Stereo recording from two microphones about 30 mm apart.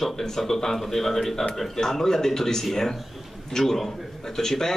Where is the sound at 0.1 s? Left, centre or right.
Centre.